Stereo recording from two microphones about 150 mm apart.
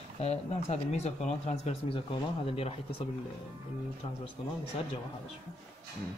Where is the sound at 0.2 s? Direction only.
45° left (ahead or behind).